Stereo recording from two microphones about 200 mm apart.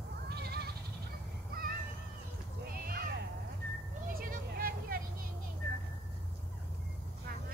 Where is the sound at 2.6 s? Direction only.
50° right (ahead or behind).